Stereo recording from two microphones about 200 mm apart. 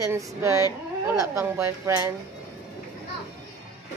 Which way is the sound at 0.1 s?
15° right (ahead or behind).